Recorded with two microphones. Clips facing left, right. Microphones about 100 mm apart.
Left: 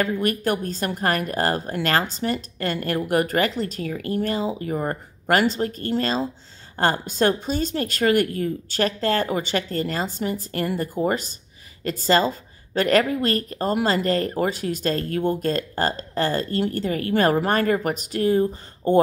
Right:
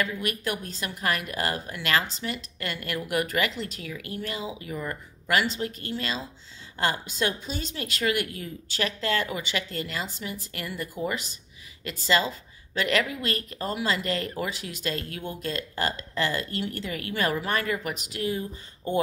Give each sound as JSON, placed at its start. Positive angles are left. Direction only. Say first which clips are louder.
{"t": 0.0, "sound": "speech", "louder": "left 7 dB", "side_deg": 40}